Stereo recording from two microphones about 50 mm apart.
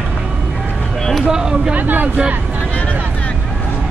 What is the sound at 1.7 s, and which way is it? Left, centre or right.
Speech, right.